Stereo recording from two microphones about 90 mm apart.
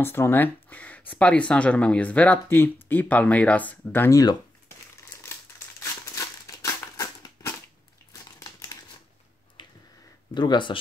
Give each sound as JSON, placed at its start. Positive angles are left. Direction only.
{"t": 0.0, "sound": "speech", "side_deg": 25}
{"t": 4.1, "sound": "speech", "side_deg": 40}
{"t": 6.1, "sound": "a sound", "side_deg": 40}
{"t": 8.1, "sound": "crumpling", "side_deg": 40}
{"t": 9.6, "sound": "a sound", "side_deg": 60}
{"t": 10.3, "sound": "speech", "side_deg": 55}